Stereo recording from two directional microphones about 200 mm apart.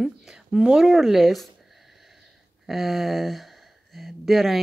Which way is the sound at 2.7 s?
Centre (ahead or behind).